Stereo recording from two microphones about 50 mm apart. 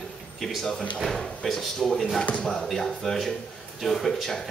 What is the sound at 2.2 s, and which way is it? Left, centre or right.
Speech, left.